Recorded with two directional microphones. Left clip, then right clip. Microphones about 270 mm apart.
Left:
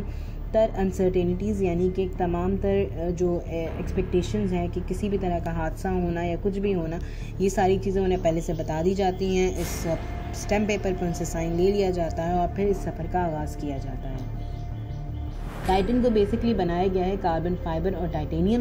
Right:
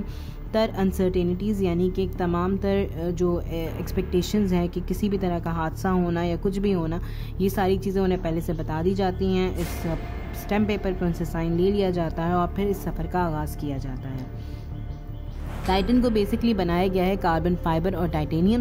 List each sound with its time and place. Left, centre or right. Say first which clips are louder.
0.5 s a woman's voice: left 1 dB; centre
7.4 s a woman's voice: left 1 dB; centre
15.7 s speech: even; centre